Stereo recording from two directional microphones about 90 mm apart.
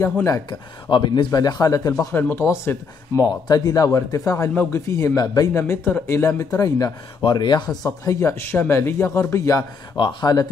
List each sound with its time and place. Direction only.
0.0 s speech: 35° left (ahead or behind)
0.5 s speech: 55° left (ahead or behind); by 2.1 s 40° left (ahead or behind)
2.1 s speech: 25° left (ahead or behind)
3.4 s speech: 45° left (ahead or behind)
5.5 s speech: 30° left (ahead or behind)
7.2 s speech: 50° left (ahead or behind)
7.8 s speech: 35° left (ahead or behind)
9.9 s speech: 55° left (ahead or behind)